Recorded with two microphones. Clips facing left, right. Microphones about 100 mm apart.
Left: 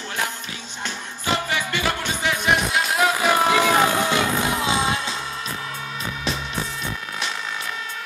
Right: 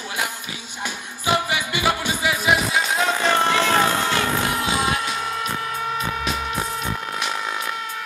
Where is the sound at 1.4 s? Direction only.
10° right (ahead or behind); by 5.1 s 25° left (ahead or behind).